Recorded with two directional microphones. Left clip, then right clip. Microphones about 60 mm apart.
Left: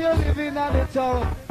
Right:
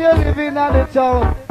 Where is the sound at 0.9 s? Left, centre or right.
Right.